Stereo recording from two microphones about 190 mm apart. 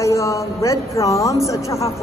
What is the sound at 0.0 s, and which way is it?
Speech, 15° left (ahead or behind).